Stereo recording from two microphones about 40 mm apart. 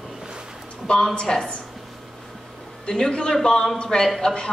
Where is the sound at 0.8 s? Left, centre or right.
Centre.